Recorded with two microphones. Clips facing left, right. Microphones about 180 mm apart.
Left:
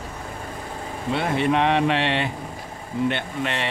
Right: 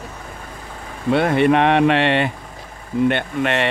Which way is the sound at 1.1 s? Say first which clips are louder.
Right 7 dB; 60° right (ahead or behind).